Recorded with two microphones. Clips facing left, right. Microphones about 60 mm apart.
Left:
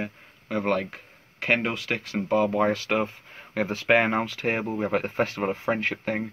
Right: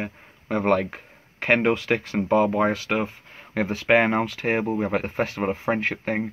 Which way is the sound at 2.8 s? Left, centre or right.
Centre.